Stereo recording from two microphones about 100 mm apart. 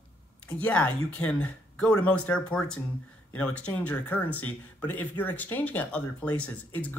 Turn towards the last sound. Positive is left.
turn(degrees=15)  # may be behind; listen again after turning